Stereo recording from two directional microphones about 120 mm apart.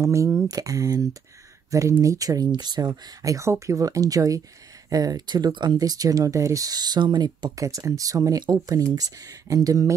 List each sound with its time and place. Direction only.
0.0 s speech: 25° right (ahead or behind)